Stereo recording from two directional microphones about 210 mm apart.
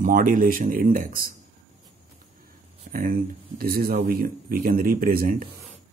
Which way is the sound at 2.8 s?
45° right (ahead or behind).